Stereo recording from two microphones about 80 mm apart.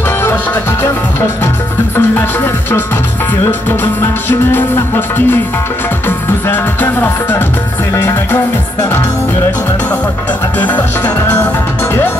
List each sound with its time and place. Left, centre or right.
2.0 s speech: left
3.6 s music: left
10.6 s music: left